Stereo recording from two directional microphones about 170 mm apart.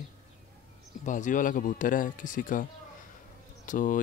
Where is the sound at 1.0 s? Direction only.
50° left (ahead or behind).